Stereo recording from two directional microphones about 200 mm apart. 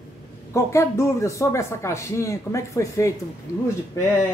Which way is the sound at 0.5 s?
15° left (ahead or behind).